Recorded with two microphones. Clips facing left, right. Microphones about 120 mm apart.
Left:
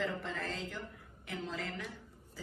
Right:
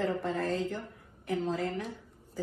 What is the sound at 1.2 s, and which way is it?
Speech, 35° right (ahead or behind).